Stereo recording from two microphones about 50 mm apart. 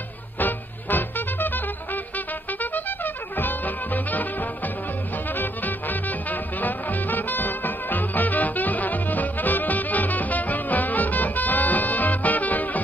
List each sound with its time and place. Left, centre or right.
0.4 s music: left